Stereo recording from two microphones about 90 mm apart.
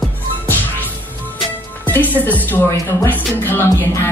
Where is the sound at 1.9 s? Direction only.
20° left (ahead or behind).